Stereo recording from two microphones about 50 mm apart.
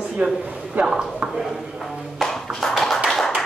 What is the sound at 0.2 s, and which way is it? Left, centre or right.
Speech, right.